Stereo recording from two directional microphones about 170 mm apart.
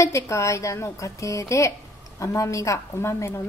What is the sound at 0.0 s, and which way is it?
A woman's voice, 15° left (ahead or behind).